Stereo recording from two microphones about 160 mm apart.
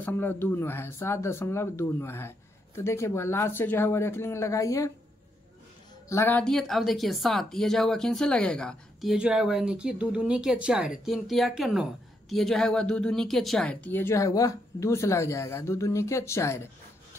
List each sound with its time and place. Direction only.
0.0 s speech: 15° left (ahead or behind)
6.0 s speech: 15° left (ahead or behind)